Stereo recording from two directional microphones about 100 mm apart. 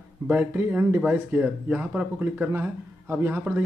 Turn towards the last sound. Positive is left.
turn(degrees=-15)  # may be behind; listen again after turning